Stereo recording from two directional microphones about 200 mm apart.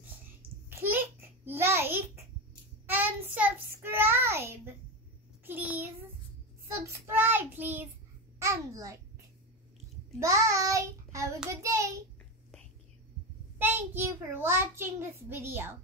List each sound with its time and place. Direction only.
0.7 s babbling: 10° right (ahead or behind)
2.9 s child singing: 10° right (ahead or behind)
8.4 s babbling: 15° right (ahead or behind)
10.1 s child singing: 15° right (ahead or behind)
11.6 s a sound: 15° right (ahead or behind)
13.6 s a child's voice: 10° right (ahead or behind)